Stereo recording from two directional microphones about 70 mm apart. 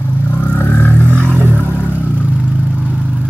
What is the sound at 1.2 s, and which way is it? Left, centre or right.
Vehicle, right.